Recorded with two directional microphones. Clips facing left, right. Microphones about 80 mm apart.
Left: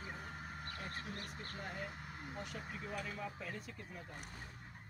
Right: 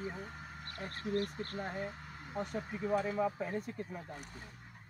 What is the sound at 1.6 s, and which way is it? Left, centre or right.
Speech, right.